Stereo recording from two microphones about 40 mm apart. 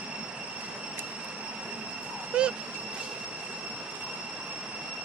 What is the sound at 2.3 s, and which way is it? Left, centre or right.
Vehicle, right.